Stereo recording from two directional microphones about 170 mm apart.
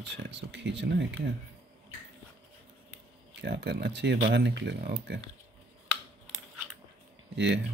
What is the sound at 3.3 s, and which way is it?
Speech, 80° right.